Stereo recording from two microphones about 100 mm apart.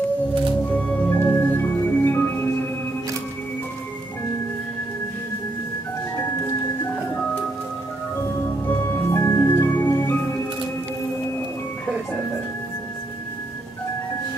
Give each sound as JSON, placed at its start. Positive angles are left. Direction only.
{"t": 0.7, "sound": "music", "side_deg": 15}
{"t": 6.1, "sound": "music", "side_deg": 25}
{"t": 8.6, "sound": "music", "side_deg": 20}